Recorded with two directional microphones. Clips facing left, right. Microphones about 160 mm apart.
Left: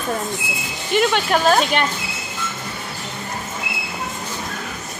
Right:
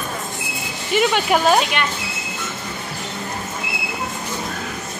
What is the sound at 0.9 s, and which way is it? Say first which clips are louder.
Speech: even; 5° right (ahead or behind).